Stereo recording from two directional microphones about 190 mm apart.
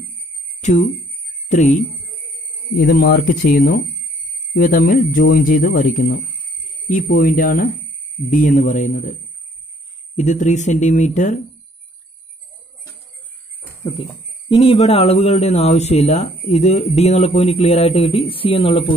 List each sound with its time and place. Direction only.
0.6 s speech: 40° left (ahead or behind)
2.8 s speech: 50° left (ahead or behind)
14.5 s speech: 30° left (ahead or behind)